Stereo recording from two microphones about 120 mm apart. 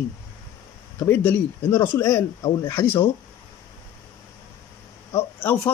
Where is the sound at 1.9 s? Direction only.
25° left (ahead or behind).